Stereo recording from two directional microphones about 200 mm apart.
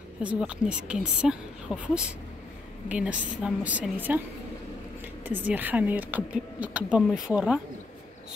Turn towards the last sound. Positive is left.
turn(degrees=-5)  # may be behind; listen again after turning